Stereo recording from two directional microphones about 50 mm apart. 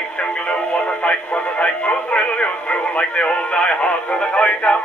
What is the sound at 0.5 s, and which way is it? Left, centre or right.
Speech, left.